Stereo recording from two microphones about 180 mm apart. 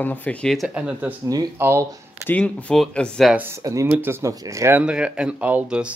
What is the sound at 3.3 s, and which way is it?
Speech, 15° right (ahead or behind).